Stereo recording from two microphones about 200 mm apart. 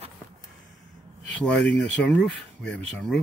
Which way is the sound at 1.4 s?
5° left (ahead or behind).